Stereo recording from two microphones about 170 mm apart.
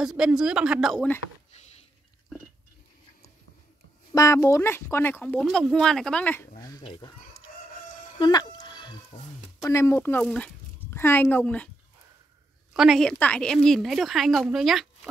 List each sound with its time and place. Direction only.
0.0 s a woman's voice: 5° right (ahead or behind)
1.5 s a sound: 40° left (ahead or behind)
4.1 s speech: 20° left (ahead or behind)
7.0 s speech: 25° left (ahead or behind)
8.2 s music: 25° left (ahead or behind)
9.6 s speech: 15° left (ahead or behind)
12.7 s a woman's voice: centre (ahead or behind)